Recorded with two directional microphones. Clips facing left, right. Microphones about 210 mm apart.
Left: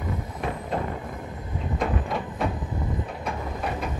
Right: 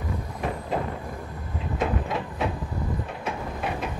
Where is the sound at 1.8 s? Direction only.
Centre (ahead or behind).